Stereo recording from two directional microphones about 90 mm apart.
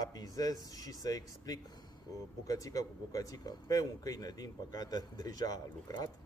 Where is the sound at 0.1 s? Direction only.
45° left (ahead or behind).